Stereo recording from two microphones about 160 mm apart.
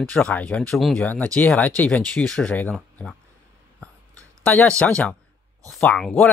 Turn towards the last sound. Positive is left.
turn(degrees=0)  # may be behind; listen again after turning